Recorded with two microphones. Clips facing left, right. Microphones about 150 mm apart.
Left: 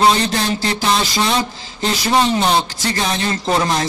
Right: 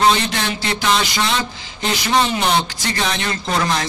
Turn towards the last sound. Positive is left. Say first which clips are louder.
# left 3 dB
turn(degrees=35)  # may be behind; listen again after turning